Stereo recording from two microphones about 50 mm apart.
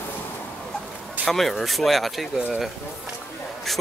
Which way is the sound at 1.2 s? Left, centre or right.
Centre.